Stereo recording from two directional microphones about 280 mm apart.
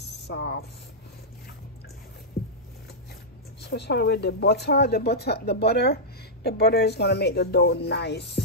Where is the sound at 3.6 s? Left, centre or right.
Left.